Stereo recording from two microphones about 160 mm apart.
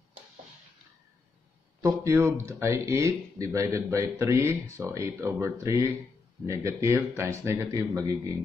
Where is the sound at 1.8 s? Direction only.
20° right (ahead or behind).